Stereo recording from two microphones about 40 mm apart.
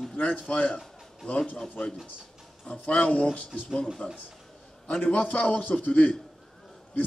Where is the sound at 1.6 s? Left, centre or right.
Left.